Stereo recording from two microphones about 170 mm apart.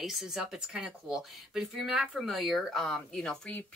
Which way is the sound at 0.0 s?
Centre (ahead or behind).